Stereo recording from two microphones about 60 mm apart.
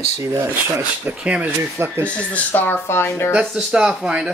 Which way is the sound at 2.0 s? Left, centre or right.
Left.